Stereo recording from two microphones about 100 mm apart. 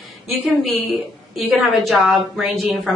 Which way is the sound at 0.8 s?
Centre (ahead or behind).